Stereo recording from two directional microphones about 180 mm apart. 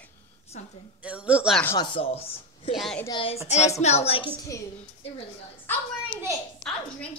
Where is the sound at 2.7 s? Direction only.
Centre (ahead or behind).